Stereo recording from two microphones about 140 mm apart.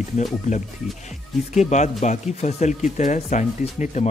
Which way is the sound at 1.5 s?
55° left (ahead or behind).